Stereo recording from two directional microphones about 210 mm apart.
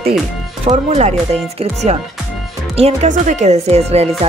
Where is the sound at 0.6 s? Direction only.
30° right (ahead or behind).